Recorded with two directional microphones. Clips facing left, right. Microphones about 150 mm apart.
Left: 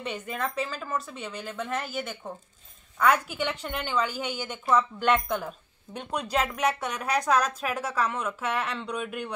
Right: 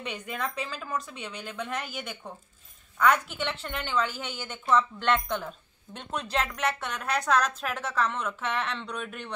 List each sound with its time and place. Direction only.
0.0 s a woman's voice: 5° left (ahead or behind)